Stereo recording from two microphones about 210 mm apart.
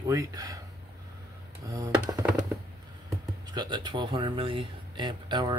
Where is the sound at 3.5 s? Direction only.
20° right (ahead or behind).